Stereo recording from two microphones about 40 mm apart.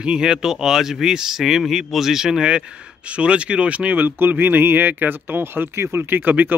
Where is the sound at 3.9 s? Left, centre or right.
Right.